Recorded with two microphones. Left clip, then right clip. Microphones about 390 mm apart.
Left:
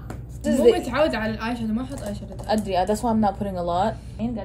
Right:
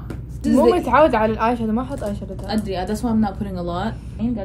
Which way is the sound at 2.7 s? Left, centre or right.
Centre.